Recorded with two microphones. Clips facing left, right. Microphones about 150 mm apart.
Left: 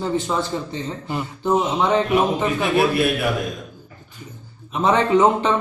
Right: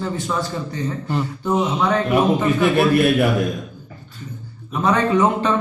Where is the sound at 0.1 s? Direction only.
20° left (ahead or behind).